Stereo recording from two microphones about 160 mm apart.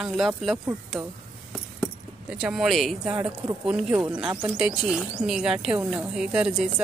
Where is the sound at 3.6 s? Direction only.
5° right (ahead or behind).